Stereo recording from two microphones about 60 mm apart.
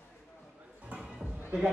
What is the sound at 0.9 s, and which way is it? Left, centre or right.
Music, right.